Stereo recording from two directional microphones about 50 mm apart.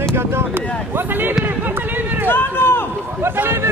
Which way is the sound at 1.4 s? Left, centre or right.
Right.